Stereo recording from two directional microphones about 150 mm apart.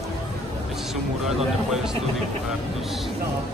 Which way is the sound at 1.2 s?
5° right (ahead or behind).